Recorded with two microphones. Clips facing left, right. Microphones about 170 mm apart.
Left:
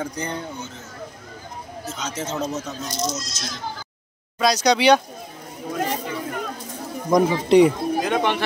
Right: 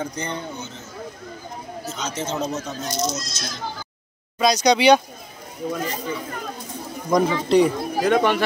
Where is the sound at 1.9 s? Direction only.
5° left (ahead or behind).